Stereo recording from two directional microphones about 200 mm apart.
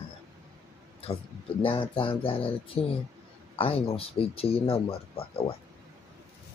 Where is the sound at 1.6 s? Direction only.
25° left (ahead or behind).